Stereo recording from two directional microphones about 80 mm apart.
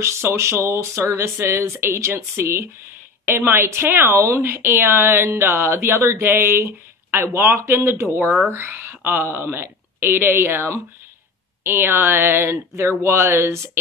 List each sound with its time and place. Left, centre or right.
0.4 s a woman's voice: right